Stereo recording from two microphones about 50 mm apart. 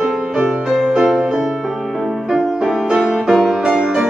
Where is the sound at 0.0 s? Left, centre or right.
Centre.